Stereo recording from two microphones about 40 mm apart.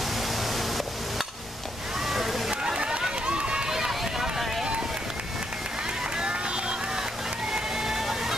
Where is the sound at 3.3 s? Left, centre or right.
Right.